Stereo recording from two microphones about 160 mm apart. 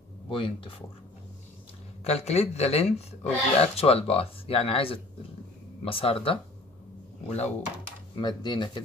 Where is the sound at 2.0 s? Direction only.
40° left (ahead or behind).